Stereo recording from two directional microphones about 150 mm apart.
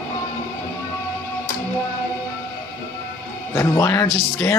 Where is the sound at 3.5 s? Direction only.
20° left (ahead or behind).